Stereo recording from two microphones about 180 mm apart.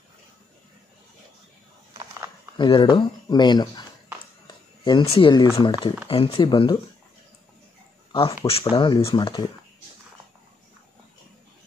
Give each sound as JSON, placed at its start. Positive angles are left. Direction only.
{"t": 2.5, "sound": "speech", "side_deg": 30}
{"t": 4.8, "sound": "speech", "side_deg": 30}
{"t": 8.1, "sound": "speech", "side_deg": 30}